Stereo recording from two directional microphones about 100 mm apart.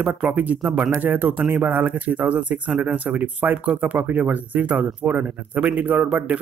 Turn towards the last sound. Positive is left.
turn(degrees=-15)  # may be behind; listen again after turning